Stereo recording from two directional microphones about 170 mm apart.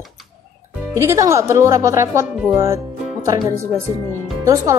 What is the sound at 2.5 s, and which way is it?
Music, 15° right (ahead or behind).